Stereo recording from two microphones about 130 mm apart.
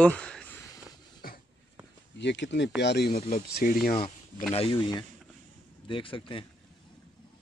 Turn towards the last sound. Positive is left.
turn(degrees=40)  # may be behind; listen again after turning